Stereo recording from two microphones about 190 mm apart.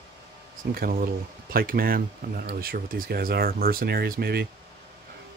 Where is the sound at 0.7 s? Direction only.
50° right (ahead or behind).